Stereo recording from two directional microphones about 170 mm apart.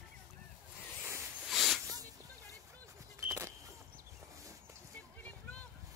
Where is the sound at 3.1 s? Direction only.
15° right (ahead or behind).